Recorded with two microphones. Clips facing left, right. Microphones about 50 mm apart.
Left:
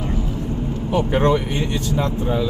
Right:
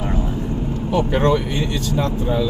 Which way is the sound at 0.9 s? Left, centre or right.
Left.